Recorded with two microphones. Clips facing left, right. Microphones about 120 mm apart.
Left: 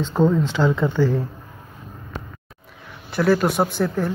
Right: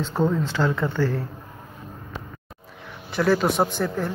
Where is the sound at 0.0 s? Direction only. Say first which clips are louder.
Left 4 dB; 20° left (ahead or behind).